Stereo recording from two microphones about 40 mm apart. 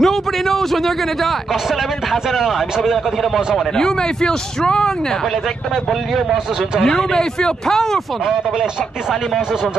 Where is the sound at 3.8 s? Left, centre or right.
Centre.